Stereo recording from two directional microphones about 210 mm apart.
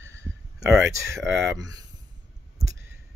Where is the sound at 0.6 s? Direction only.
10° right (ahead or behind).